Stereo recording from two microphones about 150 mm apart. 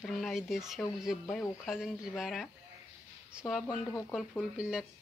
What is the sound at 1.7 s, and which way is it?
Speech, centre (ahead or behind).